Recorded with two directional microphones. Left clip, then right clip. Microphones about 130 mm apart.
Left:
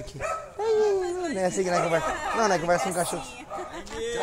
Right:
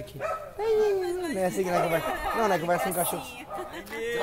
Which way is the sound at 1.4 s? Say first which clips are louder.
Left 1 dB; 40° left (ahead or behind).